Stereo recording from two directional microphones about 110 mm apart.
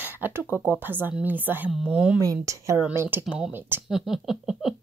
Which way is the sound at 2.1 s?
30° right (ahead or behind).